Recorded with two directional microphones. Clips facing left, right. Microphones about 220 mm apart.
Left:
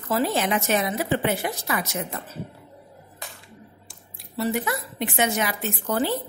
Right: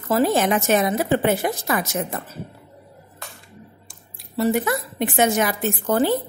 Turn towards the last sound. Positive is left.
turn(degrees=-45)  # may be behind; listen again after turning